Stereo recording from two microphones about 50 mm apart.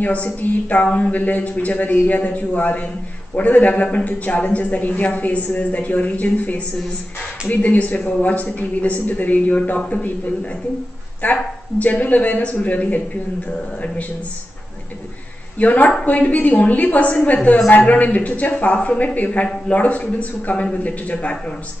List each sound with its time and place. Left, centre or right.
0.0 s a woman's voice: left
11.2 s a woman's voice: left
15.6 s a woman's voice: left